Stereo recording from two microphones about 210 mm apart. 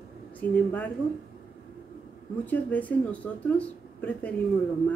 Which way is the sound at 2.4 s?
5° left (ahead or behind).